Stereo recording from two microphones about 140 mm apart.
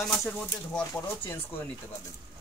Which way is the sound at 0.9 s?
20° left (ahead or behind).